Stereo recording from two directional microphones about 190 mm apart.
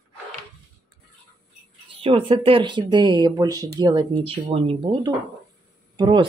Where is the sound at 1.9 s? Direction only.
30° right (ahead or behind).